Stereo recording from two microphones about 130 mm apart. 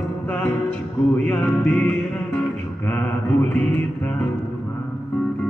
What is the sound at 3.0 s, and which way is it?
Music, 10° left (ahead or behind).